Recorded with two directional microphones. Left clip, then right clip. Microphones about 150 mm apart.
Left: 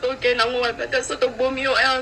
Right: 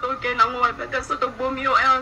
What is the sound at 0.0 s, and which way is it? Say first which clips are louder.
A woman's voice: even; 15° left (ahead or behind).